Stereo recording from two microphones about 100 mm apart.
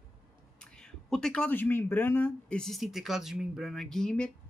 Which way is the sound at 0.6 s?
10° left (ahead or behind).